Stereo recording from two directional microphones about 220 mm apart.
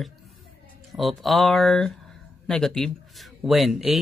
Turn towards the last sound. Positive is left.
turn(degrees=0)  # may be behind; listen again after turning